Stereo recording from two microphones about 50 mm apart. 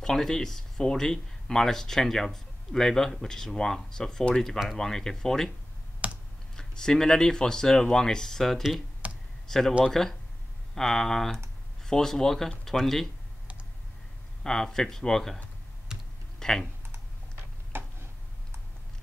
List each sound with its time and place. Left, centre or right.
0.0 s speech: centre
6.0 s computer keyboard: right
6.5 s speech: centre
9.0 s computer keyboard: right
9.5 s speech: centre
14.4 s speech: centre
15.9 s computer keyboard: centre
16.3 s typing: centre
17.7 s a sound: right